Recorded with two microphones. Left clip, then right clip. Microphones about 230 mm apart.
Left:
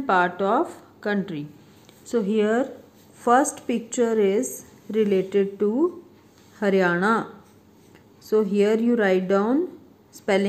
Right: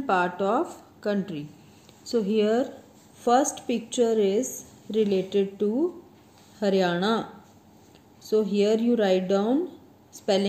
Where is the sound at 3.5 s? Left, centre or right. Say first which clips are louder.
Left 1 dB; left.